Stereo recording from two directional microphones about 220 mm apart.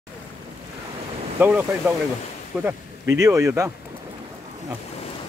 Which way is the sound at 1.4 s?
10° right (ahead or behind).